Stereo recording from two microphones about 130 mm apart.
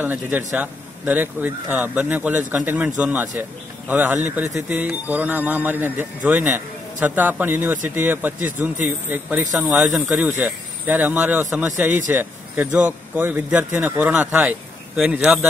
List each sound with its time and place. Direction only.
0.0 s a man's voice: 15° right (ahead or behind)